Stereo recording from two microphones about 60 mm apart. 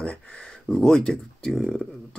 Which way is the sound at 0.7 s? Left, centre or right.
Centre.